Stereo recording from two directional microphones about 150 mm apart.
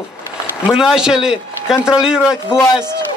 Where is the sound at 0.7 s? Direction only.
5° right (ahead or behind).